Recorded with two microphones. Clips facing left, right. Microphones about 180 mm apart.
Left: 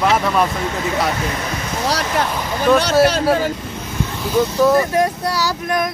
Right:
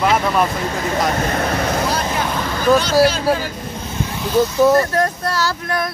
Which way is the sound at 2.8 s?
65° left (ahead or behind).